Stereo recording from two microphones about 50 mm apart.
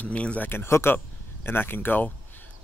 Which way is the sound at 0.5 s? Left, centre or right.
Left.